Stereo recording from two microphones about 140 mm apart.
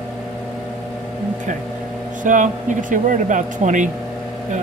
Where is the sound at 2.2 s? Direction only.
65° right (ahead or behind).